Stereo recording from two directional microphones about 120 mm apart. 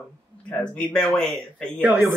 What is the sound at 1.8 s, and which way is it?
Speech, 15° right (ahead or behind).